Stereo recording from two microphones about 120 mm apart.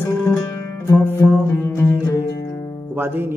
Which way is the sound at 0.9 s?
15° right (ahead or behind).